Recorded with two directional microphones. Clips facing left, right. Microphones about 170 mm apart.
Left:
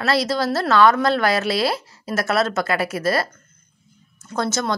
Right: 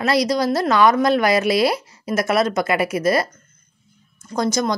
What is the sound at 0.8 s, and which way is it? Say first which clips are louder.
Speech: even; 15° right (ahead or behind).